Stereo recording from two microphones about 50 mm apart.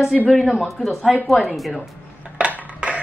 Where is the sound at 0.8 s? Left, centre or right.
Centre.